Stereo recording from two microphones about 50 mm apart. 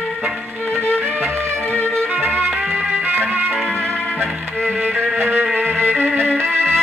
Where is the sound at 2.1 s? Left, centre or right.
Right.